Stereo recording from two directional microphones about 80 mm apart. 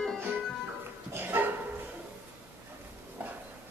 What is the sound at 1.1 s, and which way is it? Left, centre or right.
Dog, right.